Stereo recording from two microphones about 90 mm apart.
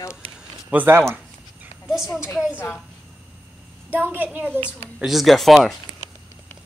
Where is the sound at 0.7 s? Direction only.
25° right (ahead or behind).